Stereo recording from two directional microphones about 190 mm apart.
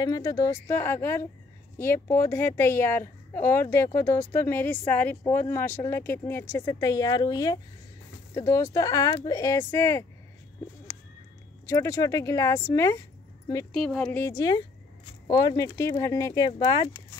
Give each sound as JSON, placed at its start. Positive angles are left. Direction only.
{"t": 0.0, "sound": "speech", "side_deg": 20}
{"t": 11.6, "sound": "speech", "side_deg": 15}